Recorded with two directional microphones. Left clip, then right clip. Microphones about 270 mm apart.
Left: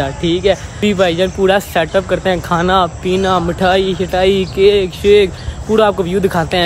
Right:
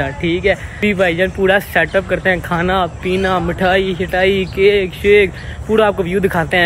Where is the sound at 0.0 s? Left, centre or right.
Centre.